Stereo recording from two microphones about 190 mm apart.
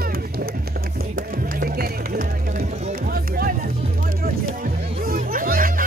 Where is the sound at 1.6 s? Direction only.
50° right (ahead or behind).